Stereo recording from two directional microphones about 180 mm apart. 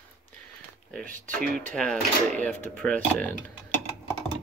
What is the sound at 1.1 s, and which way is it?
Speech, 50° right (ahead or behind).